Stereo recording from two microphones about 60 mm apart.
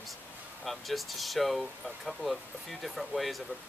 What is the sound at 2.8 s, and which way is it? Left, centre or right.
Speech, centre.